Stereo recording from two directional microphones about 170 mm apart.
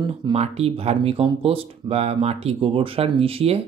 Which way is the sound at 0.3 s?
40° right (ahead or behind).